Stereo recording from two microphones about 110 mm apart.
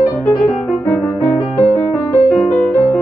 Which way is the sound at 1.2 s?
15° left (ahead or behind).